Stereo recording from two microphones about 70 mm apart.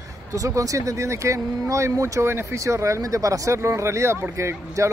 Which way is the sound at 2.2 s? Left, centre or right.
Right.